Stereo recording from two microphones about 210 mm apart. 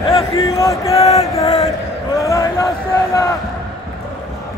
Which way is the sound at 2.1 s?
15° left (ahead or behind).